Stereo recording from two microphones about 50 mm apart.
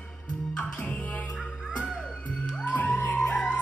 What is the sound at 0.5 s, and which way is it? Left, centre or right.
Music, left.